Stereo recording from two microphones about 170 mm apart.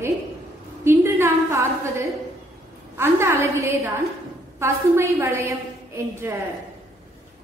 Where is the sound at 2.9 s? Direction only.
15° right (ahead or behind).